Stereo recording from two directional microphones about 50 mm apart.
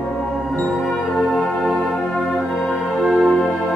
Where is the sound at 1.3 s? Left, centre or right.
Left.